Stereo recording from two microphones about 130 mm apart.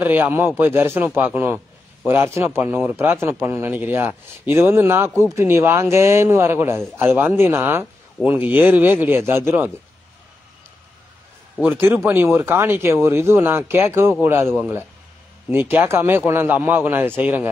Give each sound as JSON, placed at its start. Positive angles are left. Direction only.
{"t": 0.0, "sound": "a man's voice", "side_deg": -15}
{"t": 11.6, "sound": "speech", "side_deg": -15}